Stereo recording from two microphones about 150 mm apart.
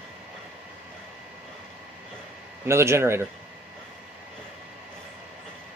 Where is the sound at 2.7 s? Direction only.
15° right (ahead or behind).